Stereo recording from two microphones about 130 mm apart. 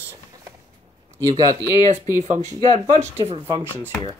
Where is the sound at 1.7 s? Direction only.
70° right (ahead or behind).